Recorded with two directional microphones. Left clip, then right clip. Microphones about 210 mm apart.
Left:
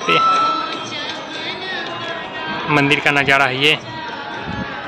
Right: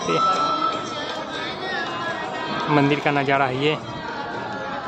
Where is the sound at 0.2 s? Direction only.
50° right (ahead or behind).